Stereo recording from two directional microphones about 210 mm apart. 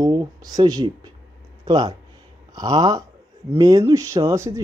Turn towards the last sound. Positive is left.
turn(degrees=-15)  # may be behind; listen again after turning